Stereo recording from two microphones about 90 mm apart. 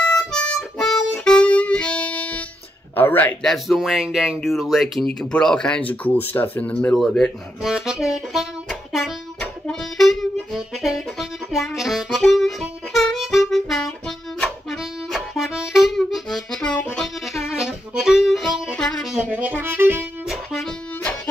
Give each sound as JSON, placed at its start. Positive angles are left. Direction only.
{"t": 0.1, "sound": "harmonica", "side_deg": 5}
{"t": 3.0, "sound": "speech", "side_deg": 20}
{"t": 3.4, "sound": "speech", "side_deg": 0}
{"t": 5.2, "sound": "speech", "side_deg": 10}
{"t": 7.0, "sound": "speech", "side_deg": 5}
{"t": 7.6, "sound": "speech", "side_deg": -5}
{"t": 9.4, "sound": "harmonica", "side_deg": 5}
{"t": 17.5, "sound": "music", "side_deg": -10}
{"t": 19.0, "sound": "speech", "side_deg": -5}
{"t": 19.3, "sound": "speech", "side_deg": -20}
{"t": 20.2, "sound": "music", "side_deg": 0}